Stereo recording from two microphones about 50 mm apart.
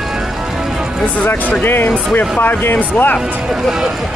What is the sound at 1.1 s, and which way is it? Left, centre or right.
Speech, left.